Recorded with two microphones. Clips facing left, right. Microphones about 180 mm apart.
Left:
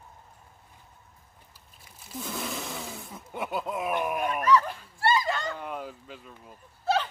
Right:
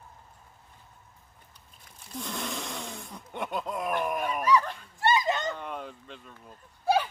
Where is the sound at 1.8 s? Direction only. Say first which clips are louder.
Even; 5° left (ahead or behind).